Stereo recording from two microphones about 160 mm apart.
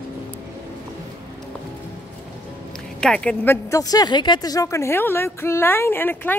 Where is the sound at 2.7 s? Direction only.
5° left (ahead or behind).